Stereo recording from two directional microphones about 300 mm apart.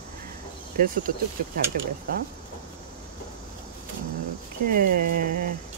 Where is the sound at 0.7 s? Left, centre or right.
Right.